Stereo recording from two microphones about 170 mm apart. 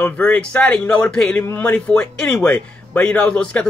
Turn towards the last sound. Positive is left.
turn(degrees=5)  # may be behind; listen again after turning